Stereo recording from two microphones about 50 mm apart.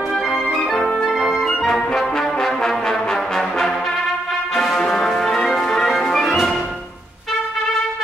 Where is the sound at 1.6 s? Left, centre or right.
Centre.